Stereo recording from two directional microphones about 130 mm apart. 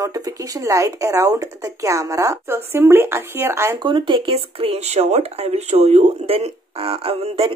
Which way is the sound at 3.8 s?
40° right (ahead or behind).